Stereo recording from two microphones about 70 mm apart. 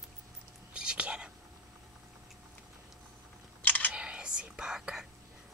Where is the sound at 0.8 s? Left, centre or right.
Centre.